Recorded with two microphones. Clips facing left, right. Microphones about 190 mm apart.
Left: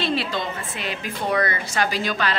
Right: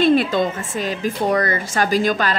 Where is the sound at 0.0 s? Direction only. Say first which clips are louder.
Right 9 dB; 50° right (ahead or behind).